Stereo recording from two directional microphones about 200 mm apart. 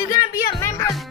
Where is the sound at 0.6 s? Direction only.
15° left (ahead or behind).